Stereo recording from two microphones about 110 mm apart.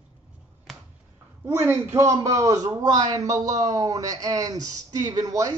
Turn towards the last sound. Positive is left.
turn(degrees=-30)  # may be behind; listen again after turning